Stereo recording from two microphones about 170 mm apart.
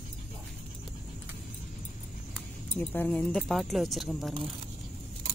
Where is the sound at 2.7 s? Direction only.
10° left (ahead or behind).